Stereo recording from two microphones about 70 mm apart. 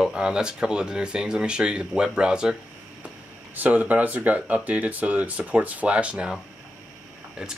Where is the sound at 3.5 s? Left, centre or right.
Right.